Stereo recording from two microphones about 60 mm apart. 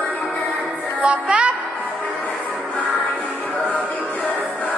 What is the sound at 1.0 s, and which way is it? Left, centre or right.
Music, centre.